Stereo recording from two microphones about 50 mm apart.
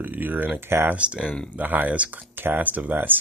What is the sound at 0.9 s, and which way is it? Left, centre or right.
Speech, right.